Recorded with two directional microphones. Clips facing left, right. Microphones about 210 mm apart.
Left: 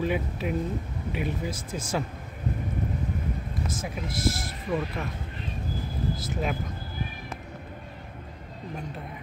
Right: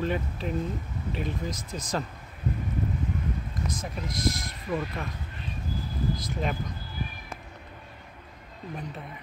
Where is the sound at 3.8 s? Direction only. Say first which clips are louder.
Left 1 dB; 5° left (ahead or behind).